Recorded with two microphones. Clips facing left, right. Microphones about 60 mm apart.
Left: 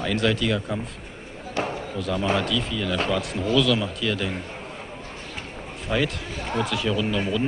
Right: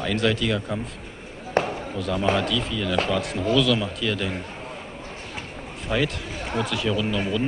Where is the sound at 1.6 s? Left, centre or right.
Right.